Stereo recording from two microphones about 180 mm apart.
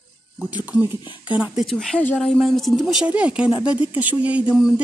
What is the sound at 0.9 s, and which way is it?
Speech, 25° left (ahead or behind).